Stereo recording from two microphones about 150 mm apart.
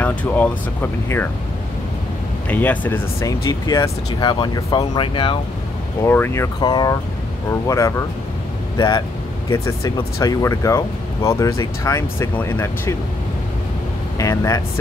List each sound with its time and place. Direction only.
0.0 s speech: 10° left (ahead or behind)
2.5 s speech: 10° left (ahead or behind); by 5.4 s 35° left (ahead or behind)
6.0 s speech: 15° left (ahead or behind)
6.6 s speech: 30° left (ahead or behind)
9.5 s speech: 20° left (ahead or behind)
14.1 s speech: 20° left (ahead or behind)